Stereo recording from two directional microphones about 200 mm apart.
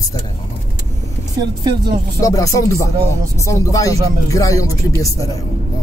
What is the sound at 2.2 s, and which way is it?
Speech, 15° left (ahead or behind).